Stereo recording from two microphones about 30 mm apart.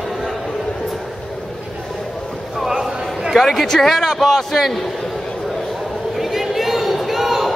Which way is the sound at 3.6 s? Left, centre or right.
Centre.